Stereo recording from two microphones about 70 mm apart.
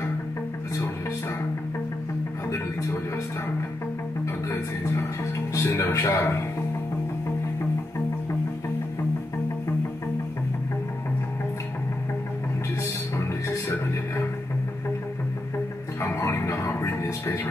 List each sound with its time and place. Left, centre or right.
2.5 s music: left
5.5 s a man's voice: left
13.5 s music: left
16.1 s music: left